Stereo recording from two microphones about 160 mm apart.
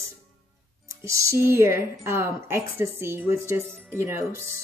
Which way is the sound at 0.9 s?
20° right (ahead or behind).